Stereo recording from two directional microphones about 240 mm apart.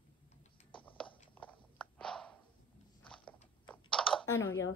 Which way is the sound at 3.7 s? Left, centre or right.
Centre.